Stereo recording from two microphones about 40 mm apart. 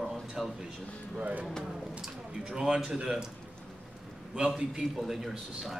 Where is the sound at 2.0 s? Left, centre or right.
Centre.